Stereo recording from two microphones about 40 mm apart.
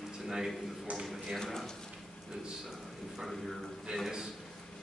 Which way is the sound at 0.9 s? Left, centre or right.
Right.